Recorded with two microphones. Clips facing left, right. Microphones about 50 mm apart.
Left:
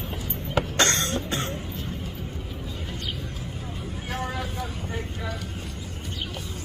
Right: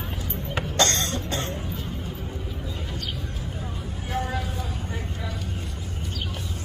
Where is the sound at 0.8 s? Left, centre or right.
Left.